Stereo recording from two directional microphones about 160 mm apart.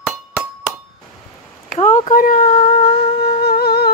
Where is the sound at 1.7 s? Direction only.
50° left (ahead or behind).